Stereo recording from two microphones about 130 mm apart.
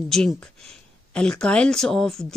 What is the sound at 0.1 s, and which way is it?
Speech, 5° left (ahead or behind).